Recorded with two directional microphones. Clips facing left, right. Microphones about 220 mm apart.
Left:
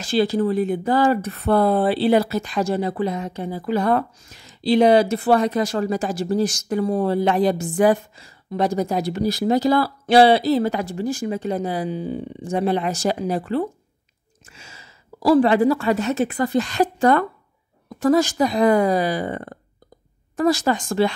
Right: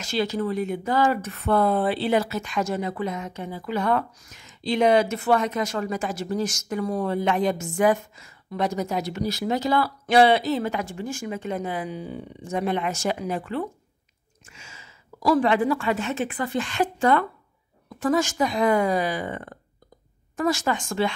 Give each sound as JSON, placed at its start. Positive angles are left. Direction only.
{"t": 0.0, "sound": "a woman's voice", "side_deg": 35}